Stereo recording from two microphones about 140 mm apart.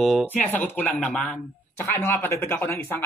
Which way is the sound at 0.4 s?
15° left (ahead or behind).